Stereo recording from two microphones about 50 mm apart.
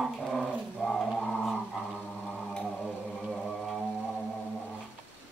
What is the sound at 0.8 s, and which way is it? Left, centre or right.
Music, centre.